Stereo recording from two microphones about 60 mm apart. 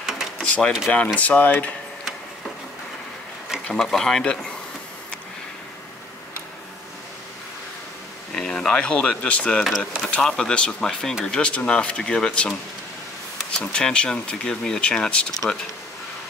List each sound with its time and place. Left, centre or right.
0.4 s a sound: centre
0.9 s speech: left
3.7 s speech: centre
8.3 s a sound: centre
8.8 s speech: left
9.6 s speech: centre
10.0 s speech: centre
13.6 s speech: centre